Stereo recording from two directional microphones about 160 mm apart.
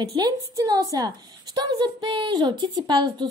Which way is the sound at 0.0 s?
25° right (ahead or behind).